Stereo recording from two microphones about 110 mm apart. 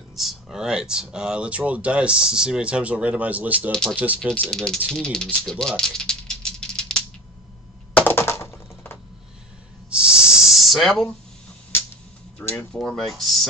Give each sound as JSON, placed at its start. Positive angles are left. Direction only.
{"t": 0.1, "sound": "speech", "side_deg": 0}
{"t": 4.4, "sound": "speech", "side_deg": 5}
{"t": 4.9, "sound": "rattle", "side_deg": 5}
{"t": 7.9, "sound": "typing", "side_deg": 20}
{"t": 9.8, "sound": "snake", "side_deg": -10}
{"t": 12.4, "sound": "a sound", "side_deg": 20}
{"t": 12.7, "sound": "speech", "side_deg": 5}